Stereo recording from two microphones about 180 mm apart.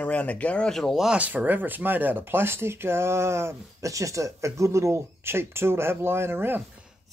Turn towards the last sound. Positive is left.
turn(degrees=-10)  # may be behind; listen again after turning